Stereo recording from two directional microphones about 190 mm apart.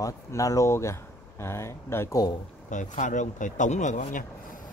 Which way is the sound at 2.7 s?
40° left (ahead or behind).